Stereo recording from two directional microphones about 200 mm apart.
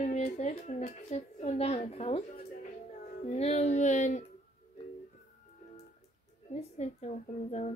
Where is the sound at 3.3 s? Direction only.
30° left (ahead or behind).